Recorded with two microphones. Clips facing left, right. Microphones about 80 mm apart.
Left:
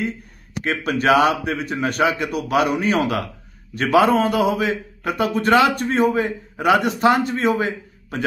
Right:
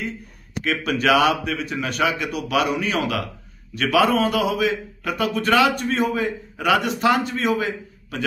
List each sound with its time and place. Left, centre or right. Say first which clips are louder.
0.7 s a man's voice: left 2 dB; left